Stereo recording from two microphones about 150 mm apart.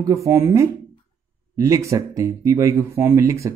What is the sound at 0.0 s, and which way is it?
Speech, 20° right (ahead or behind).